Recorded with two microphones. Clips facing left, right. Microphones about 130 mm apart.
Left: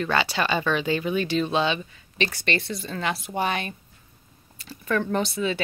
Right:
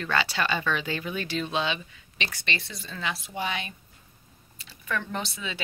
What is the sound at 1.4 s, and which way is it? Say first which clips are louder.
Speech: left 5 dB; 40° left (ahead or behind).